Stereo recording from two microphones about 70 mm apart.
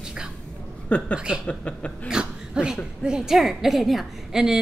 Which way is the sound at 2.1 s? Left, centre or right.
Centre.